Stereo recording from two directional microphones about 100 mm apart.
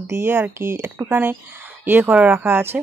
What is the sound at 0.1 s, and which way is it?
Speech, 25° right (ahead or behind).